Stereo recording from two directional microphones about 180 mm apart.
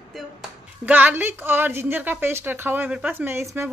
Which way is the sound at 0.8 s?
10° right (ahead or behind).